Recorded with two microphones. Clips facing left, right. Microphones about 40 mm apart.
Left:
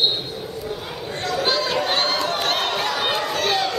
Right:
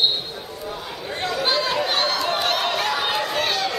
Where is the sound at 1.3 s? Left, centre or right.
Centre.